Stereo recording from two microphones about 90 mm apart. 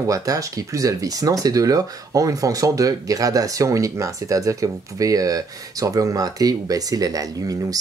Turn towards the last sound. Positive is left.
turn(degrees=-45)  # may be behind; listen again after turning